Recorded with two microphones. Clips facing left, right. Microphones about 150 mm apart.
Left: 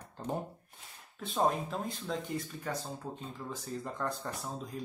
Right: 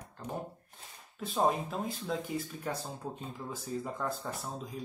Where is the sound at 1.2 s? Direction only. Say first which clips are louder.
Right 1 dB; centre (ahead or behind).